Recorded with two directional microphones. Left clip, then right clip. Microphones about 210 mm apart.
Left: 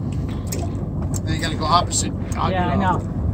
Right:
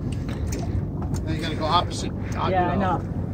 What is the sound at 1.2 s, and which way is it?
Vehicle, 50° left (ahead or behind).